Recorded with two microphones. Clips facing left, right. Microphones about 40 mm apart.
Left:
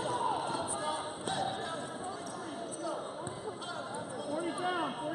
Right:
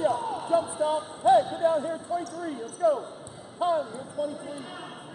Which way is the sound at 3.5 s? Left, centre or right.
Right.